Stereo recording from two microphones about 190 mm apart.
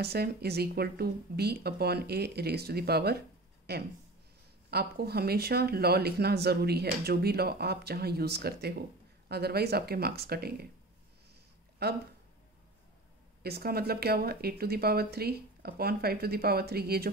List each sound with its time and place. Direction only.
0.0 s speech: 55° right (ahead or behind)
13.4 s speech: 55° right (ahead or behind)